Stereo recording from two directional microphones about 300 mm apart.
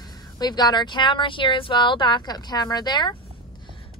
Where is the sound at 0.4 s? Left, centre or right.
Centre.